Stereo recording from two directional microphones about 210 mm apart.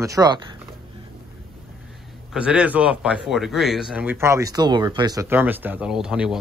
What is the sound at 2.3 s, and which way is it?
Speech, 5° right (ahead or behind).